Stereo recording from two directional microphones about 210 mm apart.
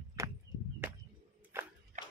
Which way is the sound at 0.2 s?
15° right (ahead or behind).